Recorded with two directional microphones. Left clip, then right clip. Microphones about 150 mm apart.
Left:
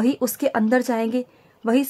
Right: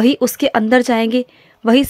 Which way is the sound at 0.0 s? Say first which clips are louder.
Right 7 dB; 15° right (ahead or behind).